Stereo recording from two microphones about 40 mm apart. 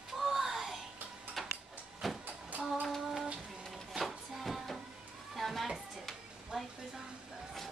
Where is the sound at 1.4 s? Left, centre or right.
Centre.